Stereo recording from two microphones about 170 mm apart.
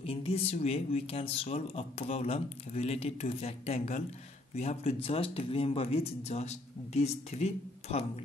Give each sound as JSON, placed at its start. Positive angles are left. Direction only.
{"t": 0.0, "sound": "speech", "side_deg": 35}